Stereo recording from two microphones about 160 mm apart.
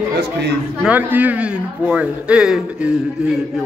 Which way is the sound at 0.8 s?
10° right (ahead or behind).